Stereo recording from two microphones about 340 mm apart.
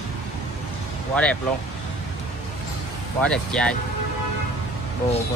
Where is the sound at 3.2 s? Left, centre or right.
Centre.